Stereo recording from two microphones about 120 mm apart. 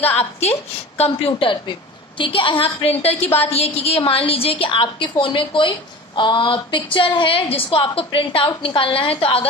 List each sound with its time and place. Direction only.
0.2 s a woman's voice: 60° left (ahead or behind)